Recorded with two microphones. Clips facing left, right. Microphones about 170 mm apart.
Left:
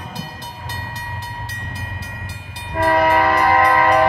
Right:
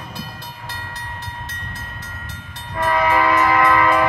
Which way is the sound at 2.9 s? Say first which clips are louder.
Left 1 dB; 45° left (ahead or behind).